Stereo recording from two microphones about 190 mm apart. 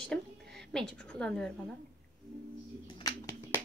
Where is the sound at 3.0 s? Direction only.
15° left (ahead or behind).